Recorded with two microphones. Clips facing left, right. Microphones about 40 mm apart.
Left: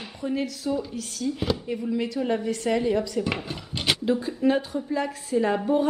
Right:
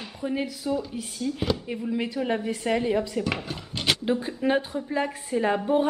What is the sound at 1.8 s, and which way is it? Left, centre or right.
A woman's voice, right.